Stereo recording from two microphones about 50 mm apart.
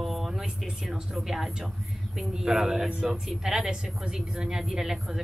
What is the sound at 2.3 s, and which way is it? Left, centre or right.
A woman's voice, centre.